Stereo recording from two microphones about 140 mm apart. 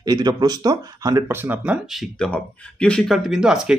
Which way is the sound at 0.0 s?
30° right (ahead or behind).